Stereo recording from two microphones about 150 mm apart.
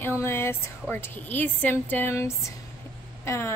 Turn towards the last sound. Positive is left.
turn(degrees=15)  # may be behind; listen again after turning